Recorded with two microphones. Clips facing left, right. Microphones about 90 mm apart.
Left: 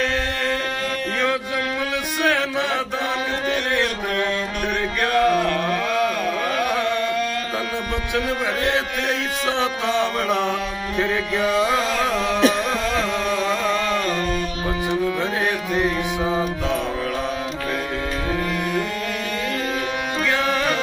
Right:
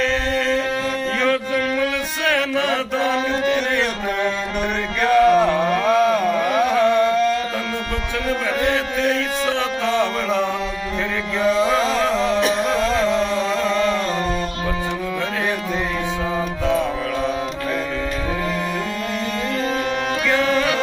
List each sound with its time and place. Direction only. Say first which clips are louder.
1.2 s a sound: right 4 dB; 15° left (ahead or behind)
5.1 s carnatic music: right 5 dB; 20° right (ahead or behind)
8.7 s mantra: right 3 dB; 20° left (ahead or behind)
11.4 s music: right 4 dB; 5° left (ahead or behind)
13.1 s music: right 2 dB; 20° right (ahead or behind)
15.7 s music: left 2 dB; 10° left (ahead or behind)
20.2 s music: right 3 dB; 10° left (ahead or behind)